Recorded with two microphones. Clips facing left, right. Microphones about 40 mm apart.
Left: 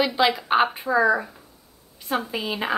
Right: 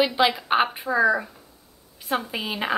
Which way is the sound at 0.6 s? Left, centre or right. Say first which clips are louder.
Left 1 dB; centre.